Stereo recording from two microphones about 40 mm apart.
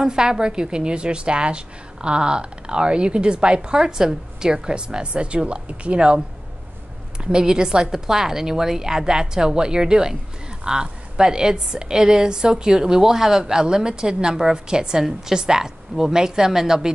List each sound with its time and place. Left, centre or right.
0.0 s a woman's voice: centre
7.2 s a woman's voice: centre